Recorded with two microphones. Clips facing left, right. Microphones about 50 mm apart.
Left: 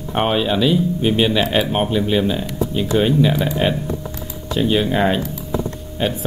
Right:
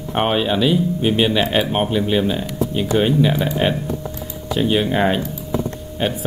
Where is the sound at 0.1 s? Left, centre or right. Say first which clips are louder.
Even; centre.